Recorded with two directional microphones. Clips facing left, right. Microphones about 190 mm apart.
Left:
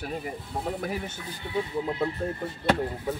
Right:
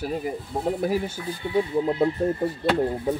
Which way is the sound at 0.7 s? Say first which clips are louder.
Right 7 dB; 35° right (ahead or behind).